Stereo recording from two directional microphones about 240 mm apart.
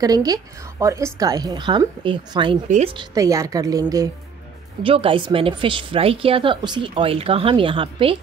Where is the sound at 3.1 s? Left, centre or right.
Centre.